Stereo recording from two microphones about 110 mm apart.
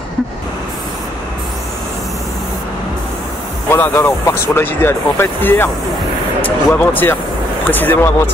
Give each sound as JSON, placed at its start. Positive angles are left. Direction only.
{"t": 3.7, "sound": "speech", "side_deg": 20}